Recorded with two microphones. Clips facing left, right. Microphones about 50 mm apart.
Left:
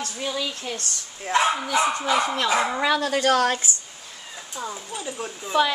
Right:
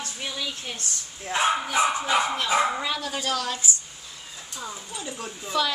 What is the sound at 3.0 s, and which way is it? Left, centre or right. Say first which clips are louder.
Speech: left 8 dB; left.